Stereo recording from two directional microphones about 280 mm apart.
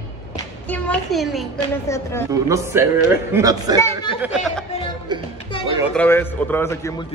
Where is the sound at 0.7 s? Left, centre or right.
Centre.